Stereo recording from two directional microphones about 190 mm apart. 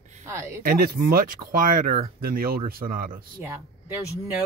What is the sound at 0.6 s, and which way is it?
Speech, 50° right (ahead or behind).